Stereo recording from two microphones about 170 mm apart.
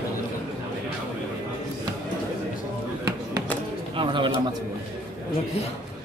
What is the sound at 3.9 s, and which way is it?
Bird, 30° right (ahead or behind).